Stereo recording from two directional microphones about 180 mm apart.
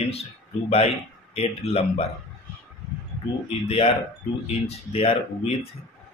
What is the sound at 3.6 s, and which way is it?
Speech, 30° left (ahead or behind).